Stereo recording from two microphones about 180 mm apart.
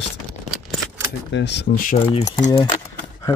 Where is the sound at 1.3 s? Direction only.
70° left (ahead or behind).